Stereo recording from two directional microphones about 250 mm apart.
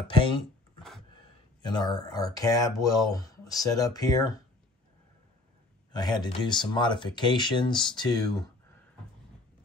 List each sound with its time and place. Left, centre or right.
0.1 s speech: left
1.6 s speech: centre
5.9 s speech: centre